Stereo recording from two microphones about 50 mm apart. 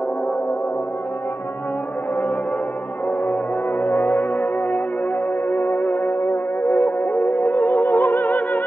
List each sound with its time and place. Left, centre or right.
3.1 s music: left